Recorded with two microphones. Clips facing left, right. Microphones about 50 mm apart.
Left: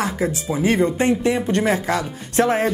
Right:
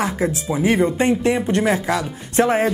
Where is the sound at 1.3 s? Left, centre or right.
Centre.